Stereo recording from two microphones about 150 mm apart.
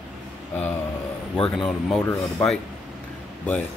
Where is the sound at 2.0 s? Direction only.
20° left (ahead or behind).